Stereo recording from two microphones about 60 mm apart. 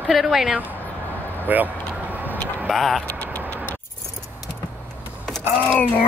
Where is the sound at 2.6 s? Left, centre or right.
Centre.